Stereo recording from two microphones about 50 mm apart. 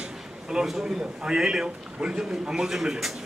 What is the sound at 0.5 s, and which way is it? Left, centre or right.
Speech, centre.